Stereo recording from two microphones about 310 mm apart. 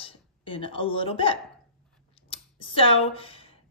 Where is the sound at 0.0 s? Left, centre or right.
Centre.